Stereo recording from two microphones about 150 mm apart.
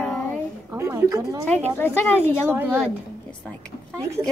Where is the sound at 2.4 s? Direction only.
15° right (ahead or behind).